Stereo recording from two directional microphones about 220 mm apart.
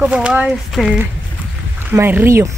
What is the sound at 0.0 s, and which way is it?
Speech, 5° right (ahead or behind).